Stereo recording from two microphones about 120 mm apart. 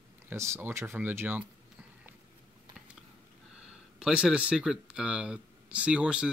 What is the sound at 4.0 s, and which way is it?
Speech, 5° right (ahead or behind).